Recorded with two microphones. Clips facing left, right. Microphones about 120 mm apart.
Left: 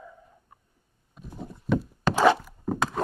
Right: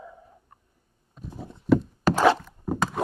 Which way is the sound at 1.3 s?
Centre (ahead or behind).